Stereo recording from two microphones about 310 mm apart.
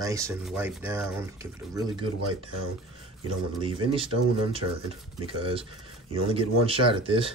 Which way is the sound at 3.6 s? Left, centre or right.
Centre.